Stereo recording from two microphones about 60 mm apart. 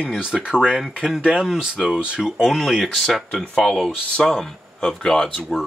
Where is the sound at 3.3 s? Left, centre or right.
Centre.